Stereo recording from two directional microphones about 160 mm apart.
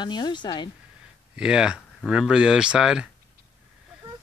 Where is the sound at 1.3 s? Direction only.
5° right (ahead or behind).